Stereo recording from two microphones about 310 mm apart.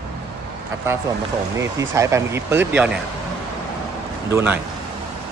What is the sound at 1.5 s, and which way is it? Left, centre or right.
Speech, centre.